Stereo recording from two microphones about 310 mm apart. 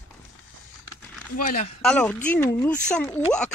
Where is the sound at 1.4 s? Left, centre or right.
Left.